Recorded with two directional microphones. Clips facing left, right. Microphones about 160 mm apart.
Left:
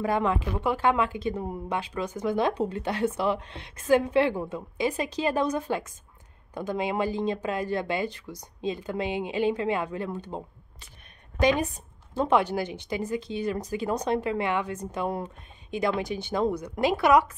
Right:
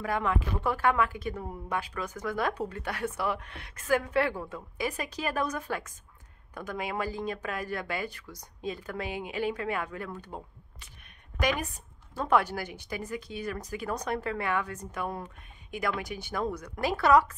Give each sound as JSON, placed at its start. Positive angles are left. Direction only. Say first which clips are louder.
{"t": 0.0, "sound": "a woman's voice", "louder": "left 4 dB", "side_deg": 25}